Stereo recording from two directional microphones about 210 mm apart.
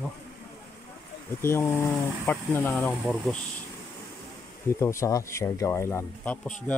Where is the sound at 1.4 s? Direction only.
10° left (ahead or behind).